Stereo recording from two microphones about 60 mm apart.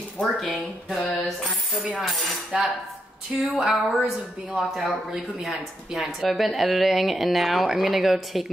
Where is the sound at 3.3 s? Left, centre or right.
Right.